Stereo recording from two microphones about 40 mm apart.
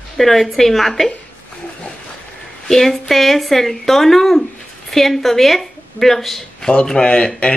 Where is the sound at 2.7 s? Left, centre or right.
Centre.